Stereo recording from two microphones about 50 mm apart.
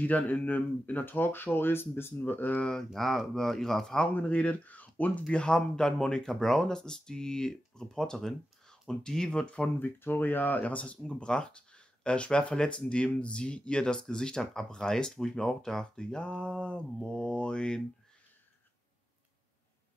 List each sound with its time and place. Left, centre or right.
0.0 s speech: left
2.6 s speech: centre
4.1 s speech: left
5.3 s speech: centre
9.8 s speech: left; by 17.8 s centre